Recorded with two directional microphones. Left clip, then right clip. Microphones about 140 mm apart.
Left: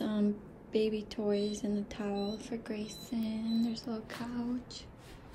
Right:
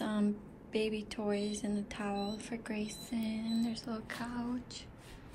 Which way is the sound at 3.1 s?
15° left (ahead or behind).